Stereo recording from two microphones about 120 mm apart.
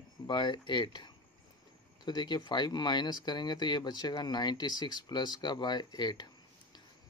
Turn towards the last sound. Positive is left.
turn(degrees=35)  # may be behind; listen again after turning